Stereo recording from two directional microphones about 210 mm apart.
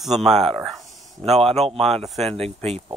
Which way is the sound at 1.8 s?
Centre (ahead or behind).